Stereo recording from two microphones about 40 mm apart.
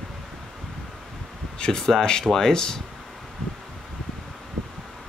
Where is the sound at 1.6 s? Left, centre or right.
Centre.